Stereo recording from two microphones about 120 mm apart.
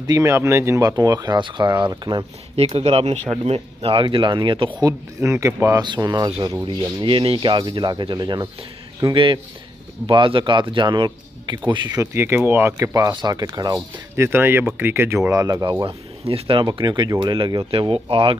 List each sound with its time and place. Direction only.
0.0 s speech: 25° right (ahead or behind)
2.5 s speech: 55° right (ahead or behind)
4.8 s speech: 25° right (ahead or behind)
5.9 s speech: 35° right (ahead or behind)
7.0 s speech: 45° right (ahead or behind)
9.1 s speech: 45° right (ahead or behind)
12.0 s speech: 20° right (ahead or behind)
14.1 s speech: 20° right (ahead or behind)
16.3 s speech: 50° right (ahead or behind)
16.6 s speech: 40° right (ahead or behind)
17.6 s speech: 50° right (ahead or behind)